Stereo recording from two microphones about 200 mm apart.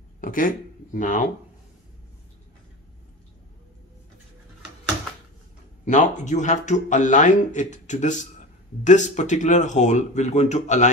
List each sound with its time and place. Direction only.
0.2 s speech: 45° left (ahead or behind)
5.9 s speech: 35° left (ahead or behind)